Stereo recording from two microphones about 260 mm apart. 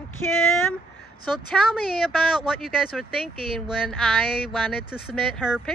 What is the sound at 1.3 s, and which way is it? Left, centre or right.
Speech, centre.